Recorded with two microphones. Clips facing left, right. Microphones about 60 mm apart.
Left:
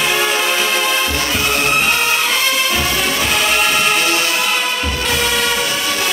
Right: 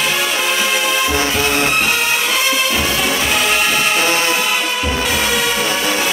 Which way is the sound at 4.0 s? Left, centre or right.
Right.